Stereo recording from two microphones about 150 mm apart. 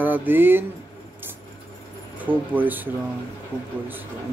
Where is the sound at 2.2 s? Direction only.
10° right (ahead or behind).